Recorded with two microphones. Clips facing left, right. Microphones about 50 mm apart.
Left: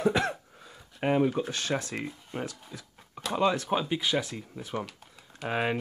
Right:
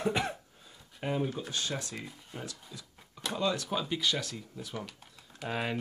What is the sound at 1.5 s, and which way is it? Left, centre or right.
Speech, left.